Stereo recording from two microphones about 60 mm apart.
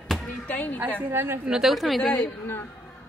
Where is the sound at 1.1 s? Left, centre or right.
Right.